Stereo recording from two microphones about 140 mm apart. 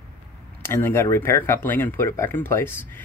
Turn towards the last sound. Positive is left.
turn(degrees=15)  # may be behind; listen again after turning